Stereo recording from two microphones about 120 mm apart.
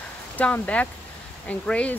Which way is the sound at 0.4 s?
10° left (ahead or behind).